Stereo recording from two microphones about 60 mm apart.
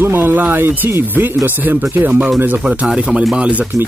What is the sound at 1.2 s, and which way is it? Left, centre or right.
Speech, right.